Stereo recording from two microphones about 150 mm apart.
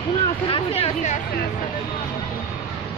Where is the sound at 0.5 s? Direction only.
40° left (ahead or behind).